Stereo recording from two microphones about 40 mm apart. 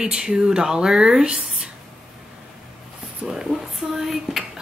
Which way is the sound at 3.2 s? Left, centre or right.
Right.